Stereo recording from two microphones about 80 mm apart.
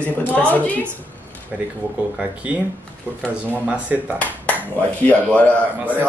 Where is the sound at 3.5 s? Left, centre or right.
Centre.